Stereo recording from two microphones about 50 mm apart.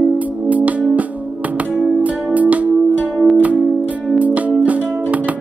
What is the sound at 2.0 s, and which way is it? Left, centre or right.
Music, right.